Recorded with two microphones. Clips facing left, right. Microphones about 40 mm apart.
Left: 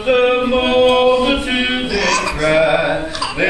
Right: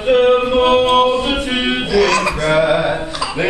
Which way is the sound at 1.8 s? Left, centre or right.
Centre.